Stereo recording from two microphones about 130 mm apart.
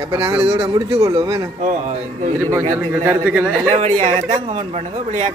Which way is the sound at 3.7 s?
60° right (ahead or behind).